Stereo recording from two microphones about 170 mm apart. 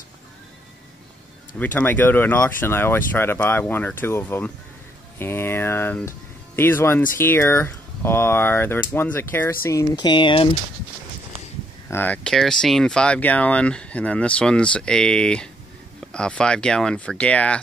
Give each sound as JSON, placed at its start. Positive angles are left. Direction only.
{"t": 1.6, "sound": "speech", "side_deg": 10}
{"t": 11.9, "sound": "speech", "side_deg": 10}